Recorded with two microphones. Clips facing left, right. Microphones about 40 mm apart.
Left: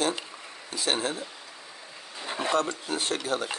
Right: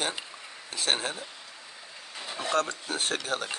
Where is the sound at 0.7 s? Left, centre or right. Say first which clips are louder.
Even; right.